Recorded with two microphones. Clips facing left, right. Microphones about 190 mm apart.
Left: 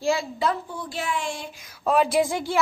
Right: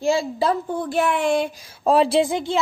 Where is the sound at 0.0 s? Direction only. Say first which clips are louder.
Right 4 dB; 30° right (ahead or behind).